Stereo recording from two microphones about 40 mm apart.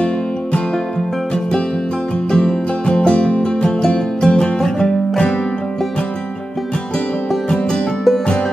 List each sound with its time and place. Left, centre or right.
2.3 s music: centre
7.4 s music: left